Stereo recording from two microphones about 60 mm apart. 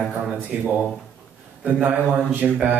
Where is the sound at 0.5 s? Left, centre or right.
Centre.